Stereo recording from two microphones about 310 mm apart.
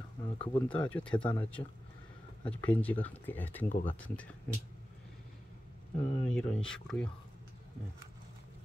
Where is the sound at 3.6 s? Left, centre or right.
Left.